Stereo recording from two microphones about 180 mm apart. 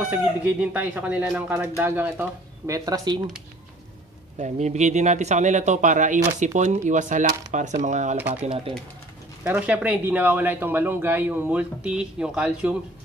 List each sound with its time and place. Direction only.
0.1 s speech: 10° right (ahead or behind)
4.4 s a man's voice: 40° right (ahead or behind)
9.4 s speech: 10° right (ahead or behind)